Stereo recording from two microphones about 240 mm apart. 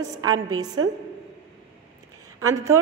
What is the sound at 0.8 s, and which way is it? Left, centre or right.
Speech, right.